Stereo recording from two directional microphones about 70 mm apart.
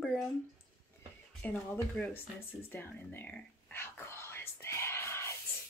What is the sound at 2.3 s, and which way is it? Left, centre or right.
Speech, left.